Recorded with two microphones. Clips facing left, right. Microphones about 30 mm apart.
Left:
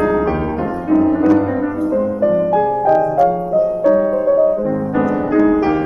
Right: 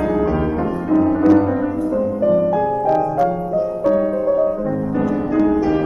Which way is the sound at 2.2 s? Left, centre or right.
Centre.